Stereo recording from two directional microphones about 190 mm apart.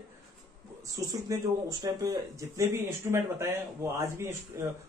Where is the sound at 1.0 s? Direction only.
20° right (ahead or behind).